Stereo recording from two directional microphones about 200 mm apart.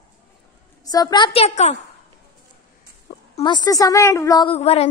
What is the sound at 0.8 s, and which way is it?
Speech, 20° left (ahead or behind).